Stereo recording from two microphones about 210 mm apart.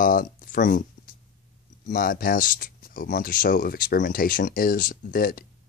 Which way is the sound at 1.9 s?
40° left (ahead or behind).